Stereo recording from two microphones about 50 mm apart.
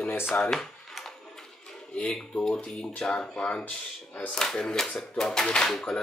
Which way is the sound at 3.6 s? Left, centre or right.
Left.